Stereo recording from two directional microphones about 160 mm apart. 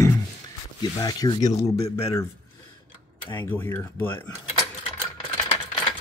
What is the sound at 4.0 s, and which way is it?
Speech, 10° left (ahead or behind).